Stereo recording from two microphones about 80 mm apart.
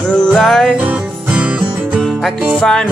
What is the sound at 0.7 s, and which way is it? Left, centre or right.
Music, centre.